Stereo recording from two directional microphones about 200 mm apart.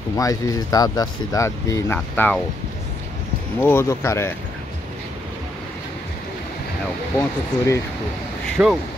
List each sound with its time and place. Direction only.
0.2 s speech: 15° left (ahead or behind)
3.6 s speech: 15° left (ahead or behind)
7.2 s speech: 15° left (ahead or behind)
8.6 s speech: 5° right (ahead or behind)